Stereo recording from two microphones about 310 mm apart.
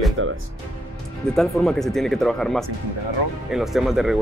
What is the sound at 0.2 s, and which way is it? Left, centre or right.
Speech, right.